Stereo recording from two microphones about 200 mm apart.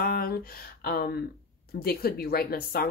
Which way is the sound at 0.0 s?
45° left (ahead or behind).